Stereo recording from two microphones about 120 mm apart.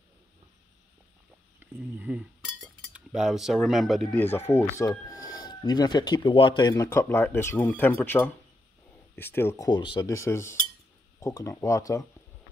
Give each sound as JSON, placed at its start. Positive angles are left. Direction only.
{"t": 1.6, "sound": "speech", "side_deg": -10}
{"t": 4.2, "sound": "speech", "side_deg": 20}
{"t": 6.9, "sound": "speech", "side_deg": 20}
{"t": 9.7, "sound": "speech", "side_deg": 40}
{"t": 10.0, "sound": "speech", "side_deg": 25}